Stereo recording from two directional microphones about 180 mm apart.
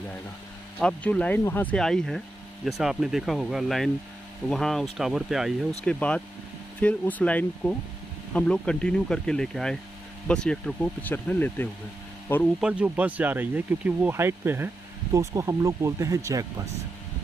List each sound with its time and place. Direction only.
0.7 s speech: 5° left (ahead or behind)
12.5 s speech: 5° right (ahead or behind)